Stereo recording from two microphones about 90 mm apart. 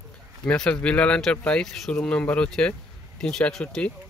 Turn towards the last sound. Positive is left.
turn(degrees=10)  # may be behind; listen again after turning